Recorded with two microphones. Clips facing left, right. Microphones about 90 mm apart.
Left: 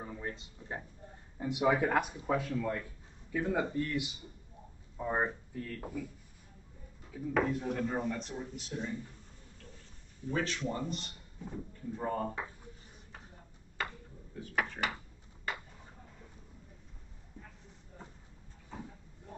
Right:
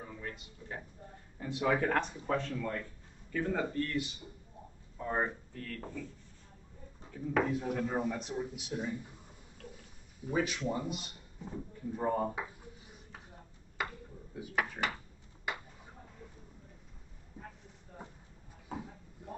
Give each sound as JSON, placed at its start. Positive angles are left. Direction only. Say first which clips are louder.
{"t": 0.0, "sound": "speech", "louder": "left 3 dB", "side_deg": 25}
{"t": 1.4, "sound": "speech", "louder": "left 2 dB", "side_deg": 15}
{"t": 7.1, "sound": "speech", "louder": "even", "side_deg": 0}
{"t": 10.2, "sound": "speech", "louder": "right 1 dB", "side_deg": -10}
{"t": 13.8, "sound": "a sound", "louder": "right 1 dB", "side_deg": -10}
{"t": 14.3, "sound": "speech", "louder": "even", "side_deg": -5}
{"t": 18.0, "sound": "clip-clop", "louder": "right 2 dB", "side_deg": -15}